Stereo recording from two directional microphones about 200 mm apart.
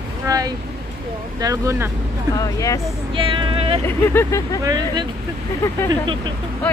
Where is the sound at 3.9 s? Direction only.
10° left (ahead or behind).